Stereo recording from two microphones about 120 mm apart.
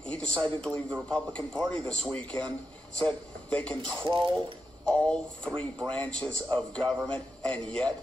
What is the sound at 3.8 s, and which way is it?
Speech, 40° right (ahead or behind).